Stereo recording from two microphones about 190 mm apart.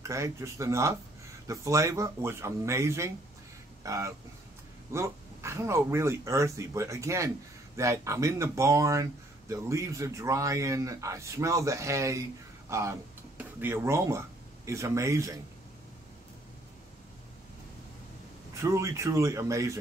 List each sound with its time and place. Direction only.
0.0 s speech: 15° right (ahead or behind)
18.5 s speech: 15° right (ahead or behind)